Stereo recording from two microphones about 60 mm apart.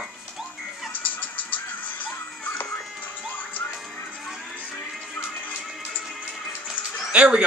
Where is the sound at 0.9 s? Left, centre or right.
Left.